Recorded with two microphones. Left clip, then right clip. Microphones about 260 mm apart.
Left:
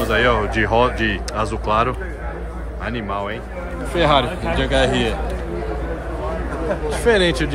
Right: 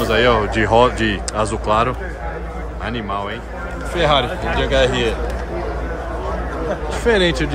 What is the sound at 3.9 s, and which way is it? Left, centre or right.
Speech, centre.